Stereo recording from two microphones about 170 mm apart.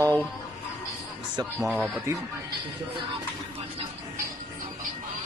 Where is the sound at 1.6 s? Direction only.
Centre (ahead or behind).